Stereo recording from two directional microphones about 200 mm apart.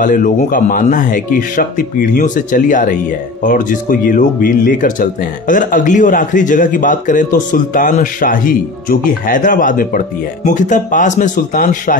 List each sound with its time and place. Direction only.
0.0 s speech: 40° left (ahead or behind)